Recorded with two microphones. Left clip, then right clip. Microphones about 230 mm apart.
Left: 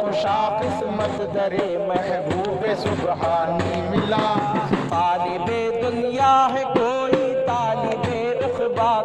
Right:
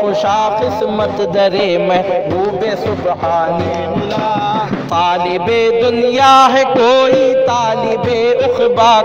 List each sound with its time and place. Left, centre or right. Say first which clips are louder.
4.9 s music: right 9 dB; right